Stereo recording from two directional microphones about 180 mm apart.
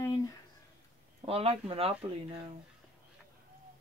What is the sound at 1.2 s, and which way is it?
Speech, 35° right (ahead or behind).